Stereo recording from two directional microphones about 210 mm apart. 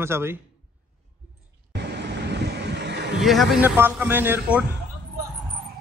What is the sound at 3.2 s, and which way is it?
Speech, centre (ahead or behind).